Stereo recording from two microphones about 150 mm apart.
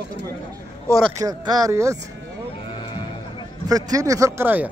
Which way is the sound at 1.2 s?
25° right (ahead or behind).